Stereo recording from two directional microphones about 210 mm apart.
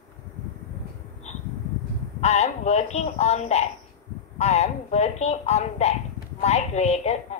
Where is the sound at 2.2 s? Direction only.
30° left (ahead or behind).